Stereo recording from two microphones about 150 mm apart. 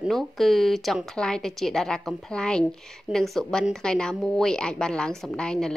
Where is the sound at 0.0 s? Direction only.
Centre (ahead or behind).